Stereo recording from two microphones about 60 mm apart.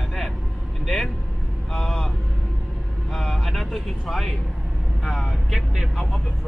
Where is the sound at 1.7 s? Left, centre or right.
Centre.